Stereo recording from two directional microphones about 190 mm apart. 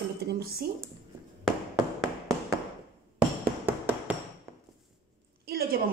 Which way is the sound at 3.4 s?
10° right (ahead or behind).